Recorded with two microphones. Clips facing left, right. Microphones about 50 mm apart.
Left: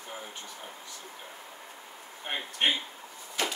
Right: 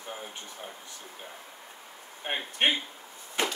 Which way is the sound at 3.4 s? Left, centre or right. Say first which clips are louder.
Right 2 dB; right.